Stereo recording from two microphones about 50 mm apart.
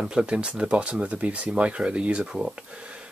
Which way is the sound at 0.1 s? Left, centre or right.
Centre.